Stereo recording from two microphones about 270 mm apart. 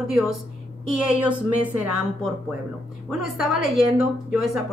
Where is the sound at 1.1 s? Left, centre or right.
Centre.